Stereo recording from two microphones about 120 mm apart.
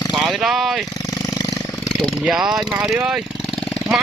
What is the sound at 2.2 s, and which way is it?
Speech, 5° right (ahead or behind).